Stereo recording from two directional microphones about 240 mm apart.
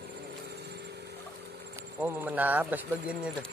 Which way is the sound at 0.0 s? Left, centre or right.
Right.